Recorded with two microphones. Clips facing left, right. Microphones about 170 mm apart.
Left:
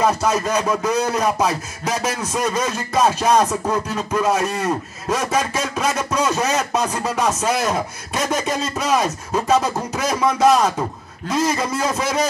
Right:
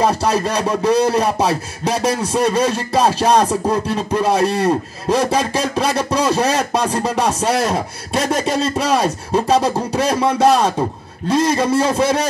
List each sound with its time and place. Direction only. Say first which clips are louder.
0.0 s a man's voice: right 2 dB; 30° right (ahead or behind)